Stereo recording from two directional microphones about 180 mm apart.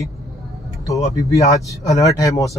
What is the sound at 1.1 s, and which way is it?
Speech, 20° left (ahead or behind).